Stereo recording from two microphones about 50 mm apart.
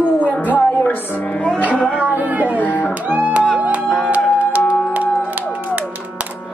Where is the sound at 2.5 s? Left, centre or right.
Left.